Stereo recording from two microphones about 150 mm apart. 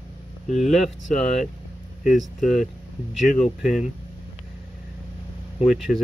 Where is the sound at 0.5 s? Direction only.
50° left (ahead or behind).